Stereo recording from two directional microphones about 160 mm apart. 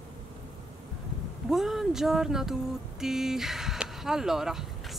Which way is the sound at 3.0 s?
Centre (ahead or behind).